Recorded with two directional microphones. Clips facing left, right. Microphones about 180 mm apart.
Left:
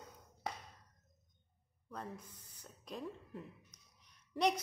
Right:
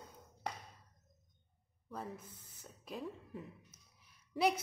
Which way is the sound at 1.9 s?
5° right (ahead or behind).